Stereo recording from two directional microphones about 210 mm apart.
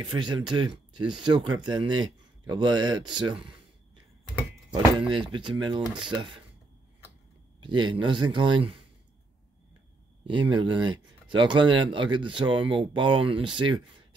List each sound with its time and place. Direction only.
0.2 s speech: 20° right (ahead or behind)
5.1 s speech: 20° right (ahead or behind)
7.6 s speech: 20° right (ahead or behind)
10.2 s speech: 25° right (ahead or behind)